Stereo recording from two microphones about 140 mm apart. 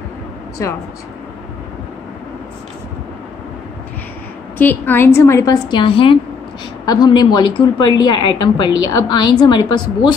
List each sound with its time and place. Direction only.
0.6 s a woman's voice: 20° left (ahead or behind)
4.6 s a woman's voice: 15° left (ahead or behind); by 9.8 s 30° left (ahead or behind)